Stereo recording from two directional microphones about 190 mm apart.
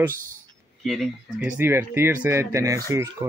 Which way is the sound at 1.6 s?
10° right (ahead or behind).